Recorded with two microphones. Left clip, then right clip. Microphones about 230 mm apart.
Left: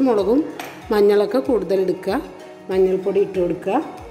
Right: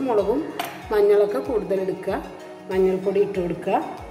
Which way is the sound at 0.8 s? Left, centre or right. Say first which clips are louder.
Left 2 dB; left.